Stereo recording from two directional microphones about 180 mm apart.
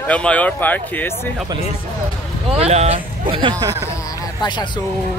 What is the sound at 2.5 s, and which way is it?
Speech, 35° right (ahead or behind).